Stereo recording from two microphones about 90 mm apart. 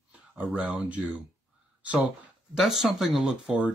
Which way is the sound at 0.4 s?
15° right (ahead or behind).